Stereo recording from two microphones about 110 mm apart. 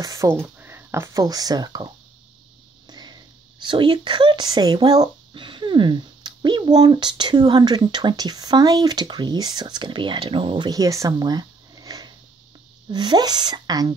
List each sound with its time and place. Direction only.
0.0 s a sound: 30° right (ahead or behind)
1.2 s speech: 35° right (ahead or behind)
2.9 s speech: 40° right (ahead or behind)